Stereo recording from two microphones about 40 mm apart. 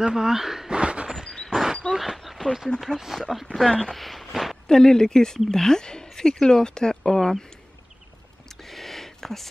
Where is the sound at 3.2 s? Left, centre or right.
Centre.